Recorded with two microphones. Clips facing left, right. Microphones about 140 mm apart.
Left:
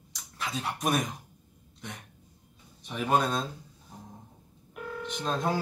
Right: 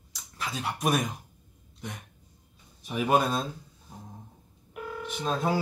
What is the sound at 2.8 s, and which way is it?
Speech, 5° right (ahead or behind).